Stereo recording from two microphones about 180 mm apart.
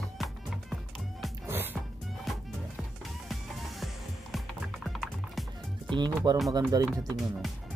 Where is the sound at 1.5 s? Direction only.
10° right (ahead or behind).